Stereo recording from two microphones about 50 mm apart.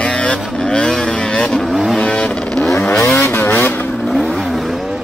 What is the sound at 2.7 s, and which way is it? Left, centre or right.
Vehicle, left.